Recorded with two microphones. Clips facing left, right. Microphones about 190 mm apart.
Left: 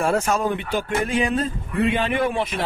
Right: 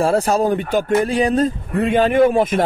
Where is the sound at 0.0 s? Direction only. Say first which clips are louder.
Right 5 dB; 35° right (ahead or behind).